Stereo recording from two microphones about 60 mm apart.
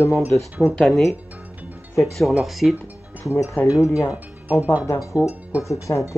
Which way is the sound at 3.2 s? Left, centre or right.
Left.